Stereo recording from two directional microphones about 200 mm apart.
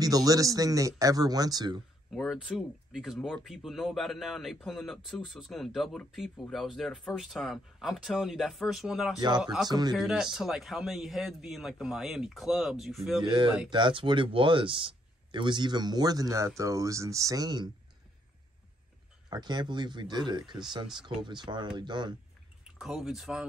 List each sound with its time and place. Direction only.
0.0 s speech: 15° right (ahead or behind)
2.0 s speech: centre (ahead or behind)
9.7 s speech: 20° right (ahead or behind)
9.9 s speech: centre (ahead or behind)
13.2 s speech: 25° right (ahead or behind)
19.2 s speech: 20° right (ahead or behind)
22.8 s speech: centre (ahead or behind)